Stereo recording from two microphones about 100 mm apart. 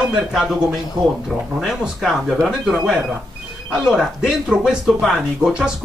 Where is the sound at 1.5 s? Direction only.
Centre (ahead or behind).